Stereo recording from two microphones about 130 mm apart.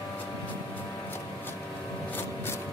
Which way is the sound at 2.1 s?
20° left (ahead or behind).